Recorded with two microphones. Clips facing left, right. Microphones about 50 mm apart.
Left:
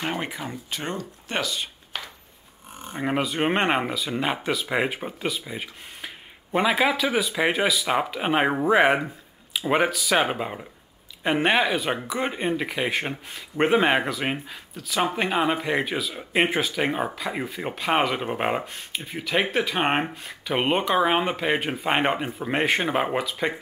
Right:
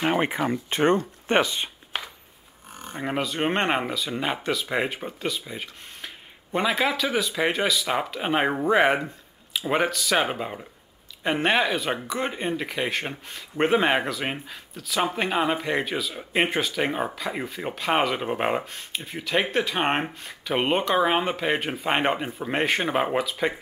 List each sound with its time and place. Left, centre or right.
0.0 s speech: right
2.9 s speech: centre